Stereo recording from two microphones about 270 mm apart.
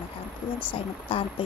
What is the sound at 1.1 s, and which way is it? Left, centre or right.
Speech, centre.